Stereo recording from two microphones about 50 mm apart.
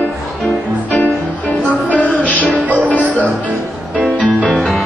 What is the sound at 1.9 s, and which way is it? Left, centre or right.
Music, left.